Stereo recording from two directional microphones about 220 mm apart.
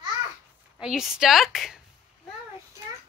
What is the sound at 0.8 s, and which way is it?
A woman's voice, 5° right (ahead or behind).